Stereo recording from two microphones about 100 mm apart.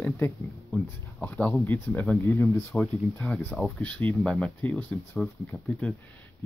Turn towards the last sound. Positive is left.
turn(degrees=15)  # may be behind; listen again after turning